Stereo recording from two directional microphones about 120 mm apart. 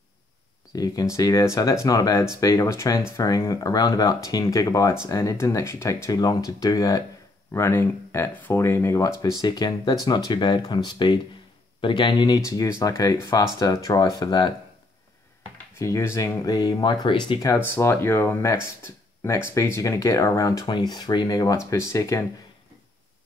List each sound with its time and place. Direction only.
0.7 s speech: 30° left (ahead or behind)
7.5 s speech: 20° left (ahead or behind)
9.4 s speech: 35° left (ahead or behind)
12.4 s speech: 25° left (ahead or behind)
15.8 s speech: 25° left (ahead or behind); by 17.4 s 40° left (ahead or behind)
17.4 s speech: 20° left (ahead or behind)